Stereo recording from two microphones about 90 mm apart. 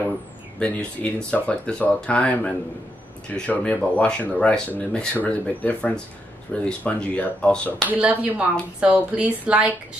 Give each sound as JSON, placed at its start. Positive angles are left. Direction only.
{"t": 0.6, "sound": "speech", "side_deg": 15}
{"t": 7.9, "sound": "a woman's voice", "side_deg": -15}